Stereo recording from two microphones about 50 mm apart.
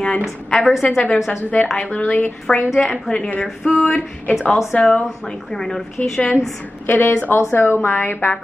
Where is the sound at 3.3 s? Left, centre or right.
Left.